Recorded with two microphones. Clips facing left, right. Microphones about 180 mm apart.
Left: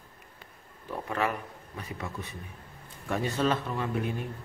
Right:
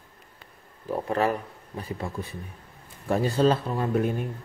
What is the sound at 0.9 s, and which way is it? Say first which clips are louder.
Speech: right 6 dB; 35° right (ahead or behind).